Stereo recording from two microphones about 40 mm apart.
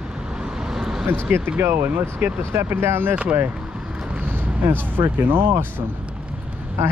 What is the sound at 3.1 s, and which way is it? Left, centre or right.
Speech, right.